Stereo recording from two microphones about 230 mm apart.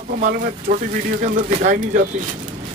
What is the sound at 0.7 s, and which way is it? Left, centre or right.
Speech, right.